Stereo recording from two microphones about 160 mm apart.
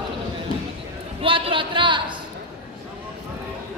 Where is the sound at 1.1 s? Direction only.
35° right (ahead or behind).